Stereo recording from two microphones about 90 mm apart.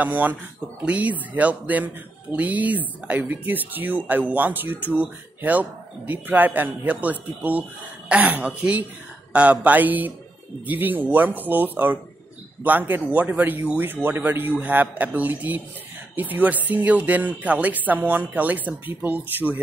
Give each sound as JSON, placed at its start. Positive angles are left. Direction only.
{"t": 0.0, "sound": "speech", "side_deg": -20}